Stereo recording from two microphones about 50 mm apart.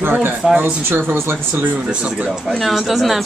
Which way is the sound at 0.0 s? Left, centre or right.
Right.